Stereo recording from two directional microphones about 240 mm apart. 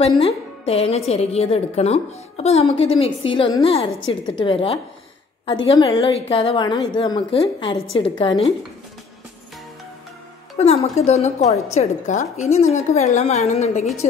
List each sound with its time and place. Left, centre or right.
0.2 s a woman's voice: left
11.0 s a woman's voice: left